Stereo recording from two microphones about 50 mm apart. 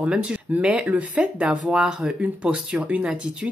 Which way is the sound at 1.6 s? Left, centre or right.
Centre.